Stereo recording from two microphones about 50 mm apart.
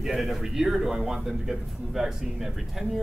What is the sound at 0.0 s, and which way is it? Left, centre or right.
A man's voice, centre.